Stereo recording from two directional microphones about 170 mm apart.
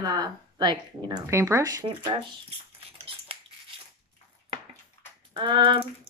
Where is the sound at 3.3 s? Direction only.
35° right (ahead or behind).